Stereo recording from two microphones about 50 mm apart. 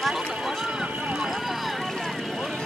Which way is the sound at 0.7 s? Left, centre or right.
Right.